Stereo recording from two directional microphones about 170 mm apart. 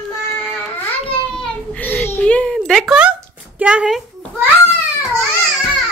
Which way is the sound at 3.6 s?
5° right (ahead or behind).